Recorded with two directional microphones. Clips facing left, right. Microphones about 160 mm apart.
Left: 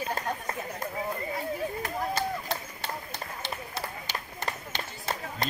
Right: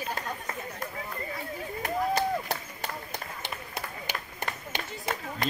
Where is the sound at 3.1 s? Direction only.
15° right (ahead or behind).